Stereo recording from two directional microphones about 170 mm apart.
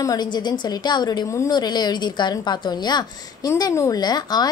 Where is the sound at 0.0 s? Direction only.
25° left (ahead or behind).